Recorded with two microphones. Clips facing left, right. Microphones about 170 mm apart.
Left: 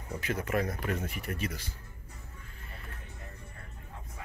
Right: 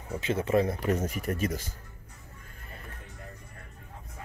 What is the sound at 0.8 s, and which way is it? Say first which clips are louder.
Speech: right 6 dB; 40° right (ahead or behind).